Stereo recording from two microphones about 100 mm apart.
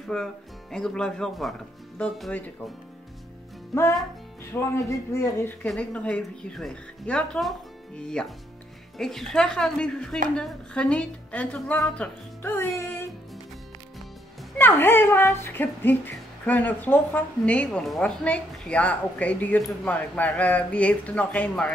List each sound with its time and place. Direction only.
0.0 s speech: 5° left (ahead or behind)
4.5 s speech: 30° left (ahead or behind)
5.8 s speech: 10° left (ahead or behind)
12.4 s music: 20° left (ahead or behind)
12.7 s speech: 20° left (ahead or behind)
14.6 s speech: 20° left (ahead or behind)
17.6 s speech: 5° left (ahead or behind)